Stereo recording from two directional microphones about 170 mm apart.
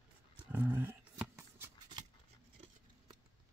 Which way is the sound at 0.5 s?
10° right (ahead or behind).